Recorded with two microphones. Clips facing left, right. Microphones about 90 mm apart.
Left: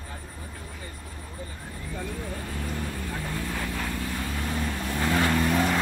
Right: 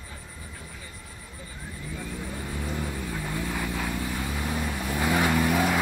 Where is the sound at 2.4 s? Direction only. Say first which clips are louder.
Right 1 dB; 15° right (ahead or behind).